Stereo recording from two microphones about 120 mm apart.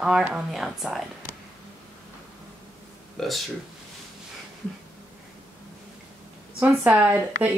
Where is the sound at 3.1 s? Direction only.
Centre (ahead or behind).